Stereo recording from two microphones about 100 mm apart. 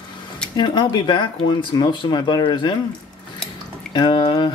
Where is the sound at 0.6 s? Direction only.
50° left (ahead or behind).